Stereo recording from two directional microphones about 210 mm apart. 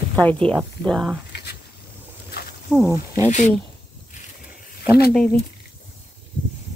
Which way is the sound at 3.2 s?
35° left (ahead or behind).